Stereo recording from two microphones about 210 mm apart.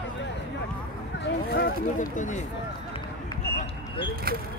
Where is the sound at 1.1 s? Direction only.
55° left (ahead or behind).